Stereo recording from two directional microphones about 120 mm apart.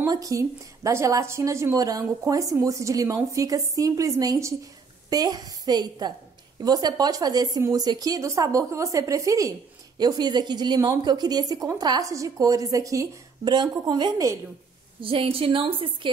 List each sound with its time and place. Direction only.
0.0 s a woman's voice: 30° right (ahead or behind)
15.0 s a woman's voice: 45° right (ahead or behind)